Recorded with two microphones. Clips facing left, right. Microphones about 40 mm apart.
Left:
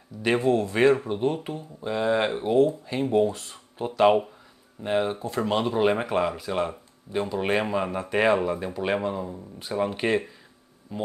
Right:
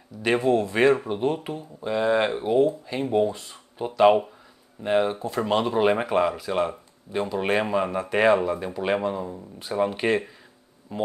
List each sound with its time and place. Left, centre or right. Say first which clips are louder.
0.2 s speech: right 1 dB; centre
10.9 s speech: right 4 dB; centre